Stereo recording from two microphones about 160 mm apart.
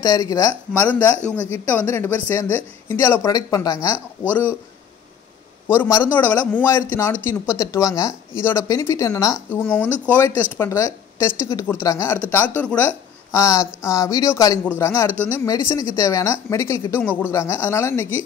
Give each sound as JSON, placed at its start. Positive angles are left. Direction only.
{"t": 0.0, "sound": "speech", "side_deg": 20}
{"t": 0.7, "sound": "speech", "side_deg": 10}
{"t": 5.7, "sound": "speech", "side_deg": 15}